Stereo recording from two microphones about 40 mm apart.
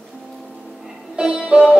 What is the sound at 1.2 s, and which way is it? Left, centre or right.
Music, centre.